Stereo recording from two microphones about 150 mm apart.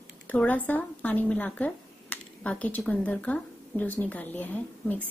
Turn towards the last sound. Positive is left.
turn(degrees=10)  # may be behind; listen again after turning